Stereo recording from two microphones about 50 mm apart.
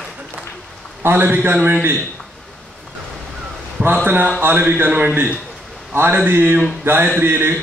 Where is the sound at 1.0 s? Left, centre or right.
Right.